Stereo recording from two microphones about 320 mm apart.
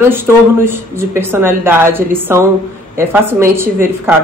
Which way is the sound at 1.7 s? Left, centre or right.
Centre.